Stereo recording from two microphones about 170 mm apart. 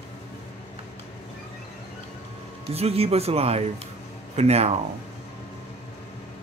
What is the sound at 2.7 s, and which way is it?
Speech, 35° right (ahead or behind).